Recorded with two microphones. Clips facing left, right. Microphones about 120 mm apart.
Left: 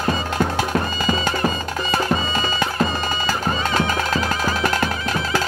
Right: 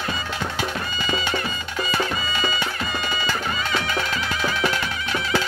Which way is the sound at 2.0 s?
40° left (ahead or behind).